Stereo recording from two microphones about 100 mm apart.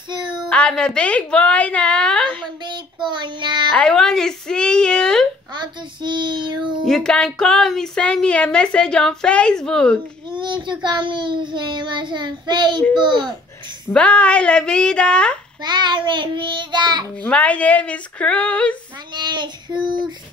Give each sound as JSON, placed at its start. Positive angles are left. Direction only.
{"t": 0.1, "sound": "a sound", "side_deg": -50}
{"t": 0.5, "sound": "a woman's voice", "side_deg": 10}
{"t": 2.6, "sound": "child singing", "side_deg": -50}
{"t": 3.7, "sound": "a woman's voice", "side_deg": 5}
{"t": 6.0, "sound": "child singing", "side_deg": -50}
{"t": 6.9, "sound": "a woman's voice", "side_deg": 5}
{"t": 10.3, "sound": "child singing", "side_deg": -50}
{"t": 13.9, "sound": "a woman's voice", "side_deg": 15}
{"t": 15.6, "sound": "child singing", "side_deg": -50}
{"t": 17.2, "sound": "a woman's voice", "side_deg": 15}
{"t": 19.1, "sound": "child singing", "side_deg": -50}
{"t": 19.7, "sound": "speech", "side_deg": -5}